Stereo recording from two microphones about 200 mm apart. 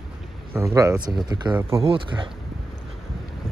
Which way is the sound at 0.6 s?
15° right (ahead or behind).